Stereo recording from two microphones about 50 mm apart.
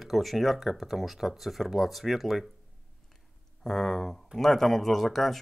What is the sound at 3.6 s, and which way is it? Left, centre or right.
Speech, centre.